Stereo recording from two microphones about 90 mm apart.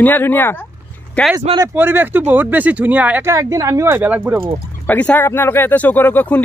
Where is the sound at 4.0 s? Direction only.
20° right (ahead or behind).